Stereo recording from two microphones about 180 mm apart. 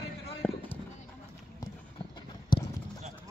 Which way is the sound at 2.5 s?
25° left (ahead or behind).